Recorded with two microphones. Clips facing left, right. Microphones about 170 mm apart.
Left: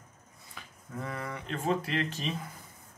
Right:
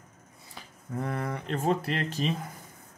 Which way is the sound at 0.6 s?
35° right (ahead or behind).